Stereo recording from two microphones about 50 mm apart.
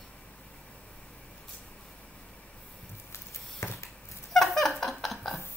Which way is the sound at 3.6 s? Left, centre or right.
Left.